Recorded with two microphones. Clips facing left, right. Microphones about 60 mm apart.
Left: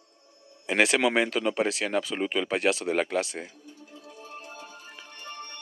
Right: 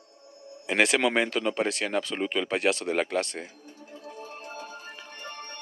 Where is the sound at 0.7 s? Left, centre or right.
Centre.